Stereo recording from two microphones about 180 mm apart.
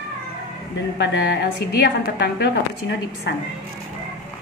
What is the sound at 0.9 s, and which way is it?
A woman's voice, 70° left (ahead or behind).